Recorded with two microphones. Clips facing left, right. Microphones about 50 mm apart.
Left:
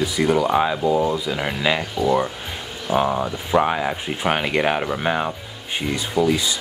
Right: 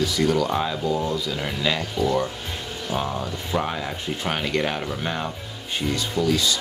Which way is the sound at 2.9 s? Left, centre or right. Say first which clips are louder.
Left 8 dB; left.